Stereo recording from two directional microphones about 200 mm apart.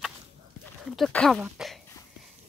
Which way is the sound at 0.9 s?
Centre (ahead or behind).